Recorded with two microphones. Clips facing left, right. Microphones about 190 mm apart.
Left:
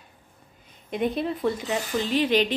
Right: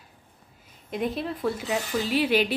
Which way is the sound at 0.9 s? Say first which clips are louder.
Left 3 dB; centre (ahead or behind).